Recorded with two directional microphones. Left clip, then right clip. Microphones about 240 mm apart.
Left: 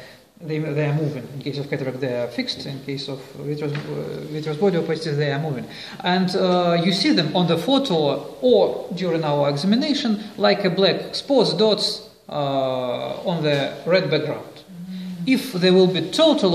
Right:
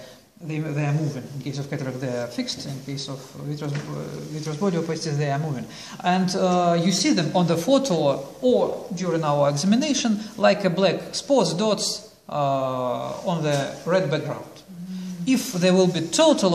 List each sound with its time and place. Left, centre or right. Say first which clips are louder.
0.5 s a man's voice: left 5 dB; centre
4.5 s speech: left 5 dB; centre
15.2 s speech: left 2 dB; right